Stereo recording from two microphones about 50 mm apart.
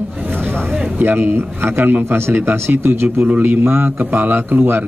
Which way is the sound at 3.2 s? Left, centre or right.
Right.